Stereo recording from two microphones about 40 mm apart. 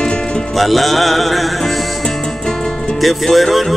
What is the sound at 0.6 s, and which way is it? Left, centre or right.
Music, centre.